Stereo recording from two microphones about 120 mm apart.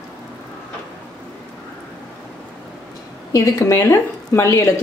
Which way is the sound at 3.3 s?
25° left (ahead or behind).